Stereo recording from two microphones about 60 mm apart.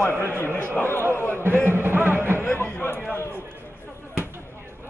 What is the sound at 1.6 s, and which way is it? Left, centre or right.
Speech, right.